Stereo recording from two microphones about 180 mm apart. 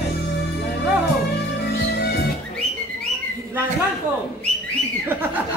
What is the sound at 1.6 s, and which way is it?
Music, 70° left (ahead or behind).